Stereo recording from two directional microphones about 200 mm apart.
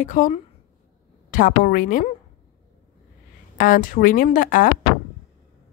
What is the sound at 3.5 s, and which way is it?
Speech, 40° left (ahead or behind).